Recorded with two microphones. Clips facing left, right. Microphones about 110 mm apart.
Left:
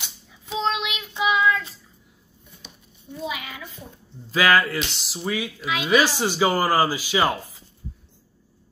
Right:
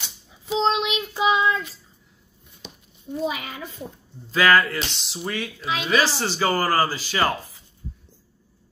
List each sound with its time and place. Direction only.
0.6 s child singing: 35° right (ahead or behind)
3.1 s a child's voice: 45° right (ahead or behind)
4.3 s speech: 5° left (ahead or behind)